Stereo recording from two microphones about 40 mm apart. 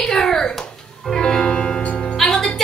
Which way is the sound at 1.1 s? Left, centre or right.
Left.